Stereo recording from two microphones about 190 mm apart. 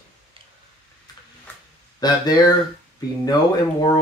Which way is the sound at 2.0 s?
20° left (ahead or behind).